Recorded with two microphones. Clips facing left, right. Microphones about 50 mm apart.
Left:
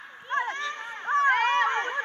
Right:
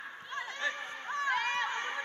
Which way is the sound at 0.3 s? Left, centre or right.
Left.